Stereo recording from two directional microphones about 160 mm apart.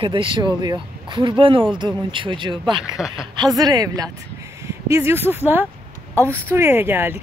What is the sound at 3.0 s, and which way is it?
Speech, 5° right (ahead or behind).